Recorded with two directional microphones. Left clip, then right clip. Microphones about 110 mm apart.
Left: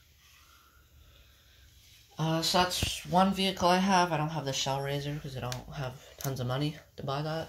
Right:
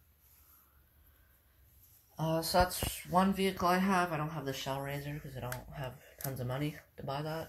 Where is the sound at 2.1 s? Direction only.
Centre (ahead or behind).